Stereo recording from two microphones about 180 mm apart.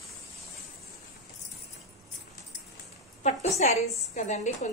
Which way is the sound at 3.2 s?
40° left (ahead or behind).